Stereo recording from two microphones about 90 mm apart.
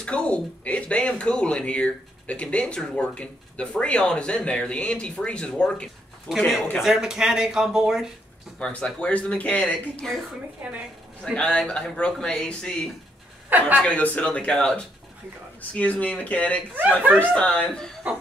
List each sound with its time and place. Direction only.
0.0 s speech: 10° left (ahead or behind)
6.2 s speech: centre (ahead or behind)
8.5 s speech: 10° left (ahead or behind)
10.6 s a woman's voice: 20° right (ahead or behind)
11.3 s speech: 10° left (ahead or behind)
17.0 s speech: 15° right (ahead or behind)
17.3 s speech: 10° left (ahead or behind)